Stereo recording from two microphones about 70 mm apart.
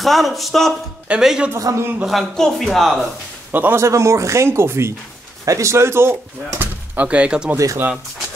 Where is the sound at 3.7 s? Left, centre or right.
Right.